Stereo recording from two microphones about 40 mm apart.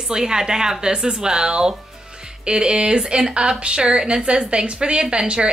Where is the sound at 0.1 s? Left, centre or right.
Centre.